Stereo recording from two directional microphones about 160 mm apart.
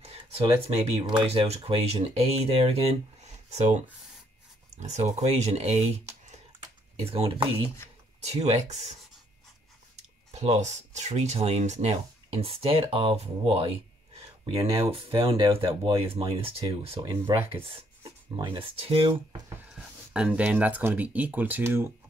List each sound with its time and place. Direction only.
0.0 s a sound: 40° right (ahead or behind)
1.0 s speech: 35° right (ahead or behind)
7.1 s speech: 35° right (ahead or behind)
10.3 s speech: 40° right (ahead or behind)
14.6 s speech: 20° right (ahead or behind)
14.9 s speech: 30° right (ahead or behind)
20.1 s speech: 10° right (ahead or behind)